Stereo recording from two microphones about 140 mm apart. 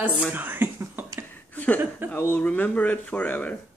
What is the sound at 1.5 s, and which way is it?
Chuckle, 10° left (ahead or behind).